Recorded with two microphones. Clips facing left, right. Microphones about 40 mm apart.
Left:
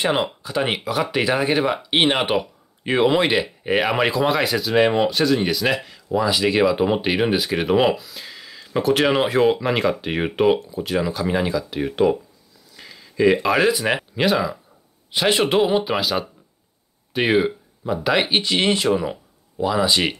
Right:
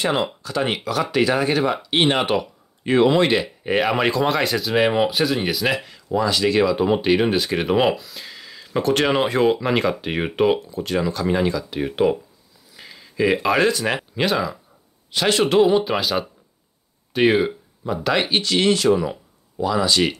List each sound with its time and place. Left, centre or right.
0.4 s speech: centre
12.7 s a sound: centre
13.7 s speech: centre
15.1 s speech: centre